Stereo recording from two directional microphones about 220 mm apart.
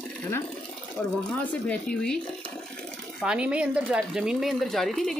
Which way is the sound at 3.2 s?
5° right (ahead or behind).